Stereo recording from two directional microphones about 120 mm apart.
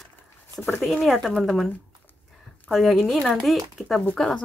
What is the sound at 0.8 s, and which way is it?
Speech, centre (ahead or behind).